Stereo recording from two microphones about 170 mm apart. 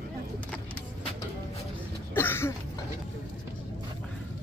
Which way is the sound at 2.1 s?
15° left (ahead or behind).